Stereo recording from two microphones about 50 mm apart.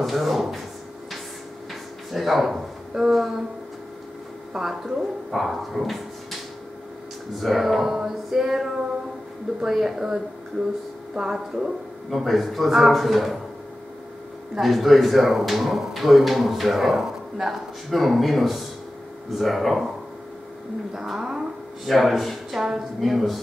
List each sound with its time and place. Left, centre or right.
0.0 s a sound: centre
1.7 s a sound: centre
4.6 s speech: centre
7.3 s speech: centre
12.1 s speech: centre
14.6 s speech: centre
20.9 s speech: centre